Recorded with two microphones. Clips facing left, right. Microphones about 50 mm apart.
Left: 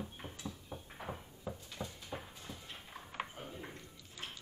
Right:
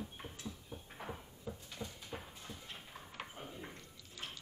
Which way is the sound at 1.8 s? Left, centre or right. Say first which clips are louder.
Left 2 dB; centre.